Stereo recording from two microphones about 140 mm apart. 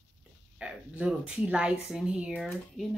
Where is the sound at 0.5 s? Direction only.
5° right (ahead or behind).